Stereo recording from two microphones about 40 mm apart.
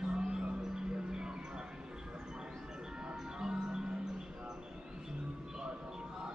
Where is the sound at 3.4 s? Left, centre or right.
Centre.